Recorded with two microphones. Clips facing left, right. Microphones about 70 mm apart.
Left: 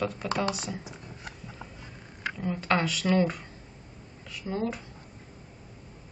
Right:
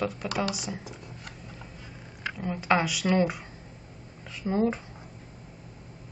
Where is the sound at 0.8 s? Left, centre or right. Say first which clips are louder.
Even; left.